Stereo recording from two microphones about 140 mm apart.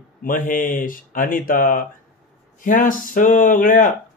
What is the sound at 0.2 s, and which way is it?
Speech, 75° left (ahead or behind).